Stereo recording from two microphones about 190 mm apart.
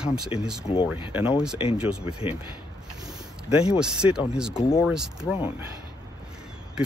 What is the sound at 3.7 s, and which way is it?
Speech, 5° right (ahead or behind).